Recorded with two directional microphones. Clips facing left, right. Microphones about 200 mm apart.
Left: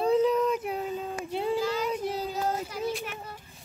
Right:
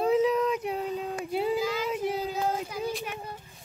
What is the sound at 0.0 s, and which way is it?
Child singing, centre (ahead or behind).